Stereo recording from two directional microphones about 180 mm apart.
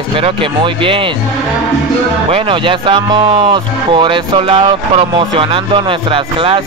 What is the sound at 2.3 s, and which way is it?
Speech, 30° right (ahead or behind).